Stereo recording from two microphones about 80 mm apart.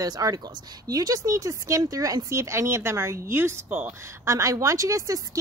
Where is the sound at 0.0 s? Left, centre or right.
Right.